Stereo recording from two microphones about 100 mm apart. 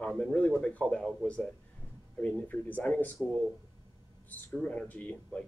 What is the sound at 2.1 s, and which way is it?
Speech, 15° left (ahead or behind).